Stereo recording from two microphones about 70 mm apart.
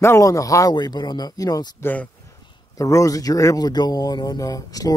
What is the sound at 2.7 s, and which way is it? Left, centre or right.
Speech, left.